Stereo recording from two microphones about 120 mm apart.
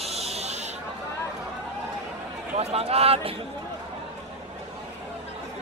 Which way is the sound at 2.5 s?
55° right (ahead or behind).